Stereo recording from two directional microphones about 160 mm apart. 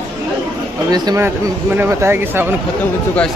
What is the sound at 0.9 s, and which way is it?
Speech, 25° right (ahead or behind).